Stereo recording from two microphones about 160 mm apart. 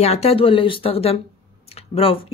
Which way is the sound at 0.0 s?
40° left (ahead or behind).